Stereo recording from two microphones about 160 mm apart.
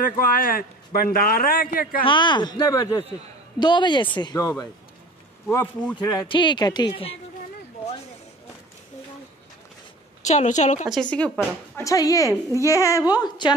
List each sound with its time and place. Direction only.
0.3 s a man's voice: 65° left (ahead or behind)
2.0 s a child's voice: 30° left (ahead or behind)
5.5 s a woman's voice: 10° left (ahead or behind)
5.9 s a child's voice: 30° left (ahead or behind)
10.2 s a woman's voice: 45° left (ahead or behind)
10.9 s a woman's voice: 5° left (ahead or behind)
11.8 s a child's voice: 20° left (ahead or behind)